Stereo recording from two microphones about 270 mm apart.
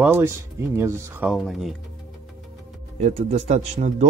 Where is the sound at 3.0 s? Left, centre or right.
Right.